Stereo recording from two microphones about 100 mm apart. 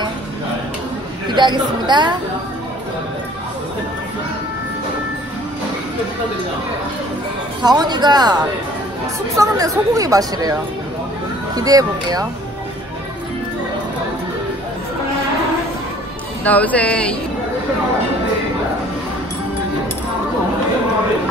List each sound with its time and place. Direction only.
1.3 s speech: 50° right (ahead or behind)
7.6 s speech: 45° right (ahead or behind)
11.5 s speech: 40° right (ahead or behind)
16.4 s speech: 15° left (ahead or behind)